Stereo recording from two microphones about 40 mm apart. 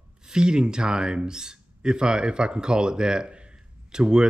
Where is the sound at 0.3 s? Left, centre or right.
Right.